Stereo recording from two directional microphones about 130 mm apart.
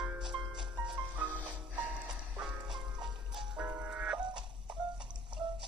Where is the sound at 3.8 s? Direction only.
5° right (ahead or behind).